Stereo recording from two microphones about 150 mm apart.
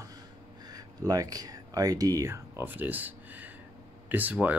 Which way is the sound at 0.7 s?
25° right (ahead or behind).